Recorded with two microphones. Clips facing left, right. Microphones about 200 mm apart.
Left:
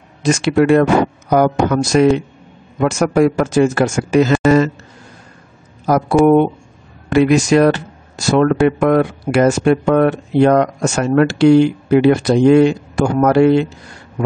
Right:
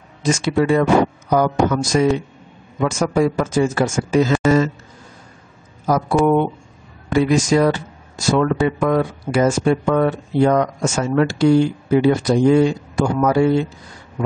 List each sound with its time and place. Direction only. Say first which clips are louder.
0.2 s speech: left 4 dB; 70° left (ahead or behind)
6.2 s speech: left 5 dB; 75° left (ahead or behind)